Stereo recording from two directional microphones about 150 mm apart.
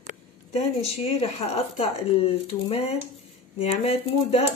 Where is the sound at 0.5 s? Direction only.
40° left (ahead or behind).